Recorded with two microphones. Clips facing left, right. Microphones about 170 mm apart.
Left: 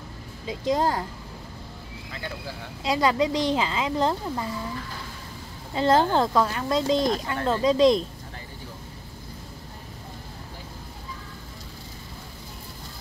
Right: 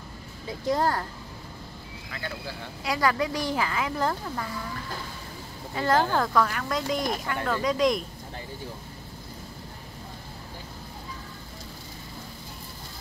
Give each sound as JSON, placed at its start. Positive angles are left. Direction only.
{"t": 0.5, "sound": "speech", "side_deg": 20}
{"t": 2.8, "sound": "speech", "side_deg": 20}
{"t": 5.8, "sound": "speech", "side_deg": 25}